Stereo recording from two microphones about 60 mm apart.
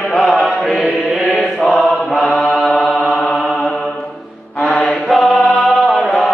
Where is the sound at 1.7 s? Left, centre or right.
Centre.